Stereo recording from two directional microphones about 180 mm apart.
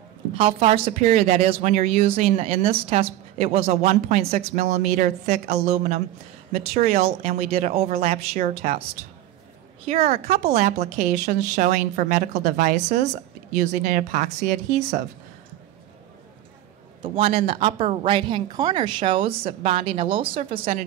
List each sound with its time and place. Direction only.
0.4 s a woman's voice: 35° right (ahead or behind)
2.0 s a woman's voice: 35° right (ahead or behind)
6.7 s speech: 50° right (ahead or behind)
7.0 s a woman's voice: 35° right (ahead or behind)
9.8 s a woman's voice: 35° right (ahead or behind)
17.0 s a woman's voice: 30° right (ahead or behind)